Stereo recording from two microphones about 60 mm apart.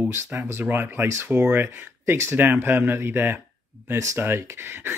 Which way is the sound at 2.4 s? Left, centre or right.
Right.